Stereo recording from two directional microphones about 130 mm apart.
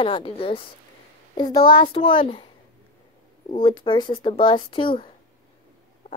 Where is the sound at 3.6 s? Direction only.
40° left (ahead or behind).